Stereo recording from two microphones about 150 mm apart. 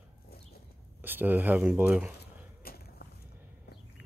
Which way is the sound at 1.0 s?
15° right (ahead or behind).